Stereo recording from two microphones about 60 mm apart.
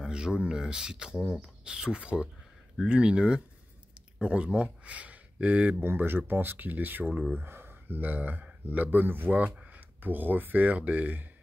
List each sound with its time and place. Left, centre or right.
0.0 s speech: centre
5.8 s speech: right
9.4 s speech: right